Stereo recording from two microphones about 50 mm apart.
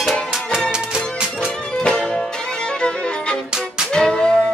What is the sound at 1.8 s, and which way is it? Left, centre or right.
Music, centre.